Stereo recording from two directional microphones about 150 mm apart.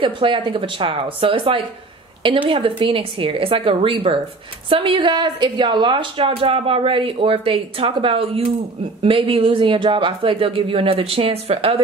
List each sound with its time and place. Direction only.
0.0 s a woman's voice: 35° right (ahead or behind)